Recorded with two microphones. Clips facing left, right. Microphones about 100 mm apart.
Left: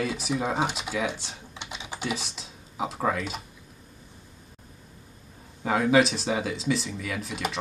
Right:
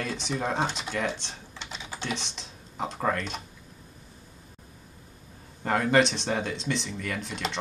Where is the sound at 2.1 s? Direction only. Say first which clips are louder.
Left 1 dB; 5° left (ahead or behind).